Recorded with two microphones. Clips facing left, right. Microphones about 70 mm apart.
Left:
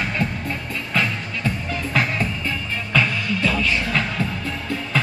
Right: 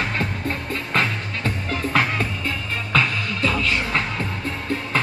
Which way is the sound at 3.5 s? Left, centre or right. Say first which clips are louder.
Left 1 dB; right.